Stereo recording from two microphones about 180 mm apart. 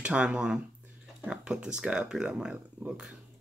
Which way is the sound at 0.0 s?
5° right (ahead or behind).